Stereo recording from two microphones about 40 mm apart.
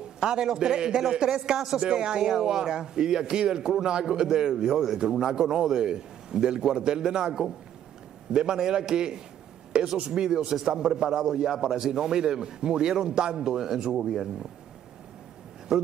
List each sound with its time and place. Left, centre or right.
0.2 s a man's voice: centre
15.7 s a man's voice: centre